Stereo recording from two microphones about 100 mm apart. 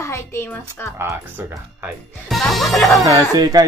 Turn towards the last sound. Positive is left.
turn(degrees=-40)  # may be behind; listen again after turning